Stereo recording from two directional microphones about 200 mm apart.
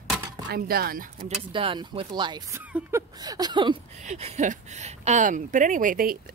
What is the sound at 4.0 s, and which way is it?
Speech, 35° right (ahead or behind).